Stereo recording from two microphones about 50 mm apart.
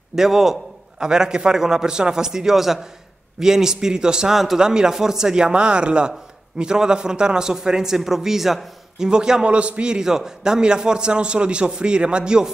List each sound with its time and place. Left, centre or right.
0.1 s a man's voice: centre